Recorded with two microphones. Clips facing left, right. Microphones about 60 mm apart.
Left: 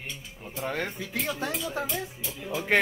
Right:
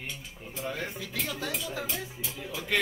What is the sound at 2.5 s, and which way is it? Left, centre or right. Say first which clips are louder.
Speech: left 7 dB; left.